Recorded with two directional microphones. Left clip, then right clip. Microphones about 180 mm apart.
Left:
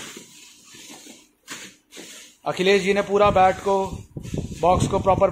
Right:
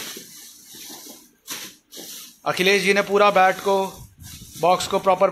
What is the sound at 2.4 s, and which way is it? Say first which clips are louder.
Speech: right 1 dB; 5° left (ahead or behind).